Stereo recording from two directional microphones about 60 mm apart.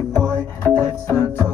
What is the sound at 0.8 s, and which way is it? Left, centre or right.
Music, right.